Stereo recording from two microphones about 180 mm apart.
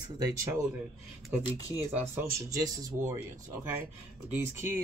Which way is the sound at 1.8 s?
15° right (ahead or behind).